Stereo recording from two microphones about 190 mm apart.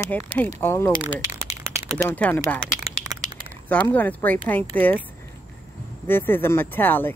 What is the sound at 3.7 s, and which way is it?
Speech, 10° left (ahead or behind).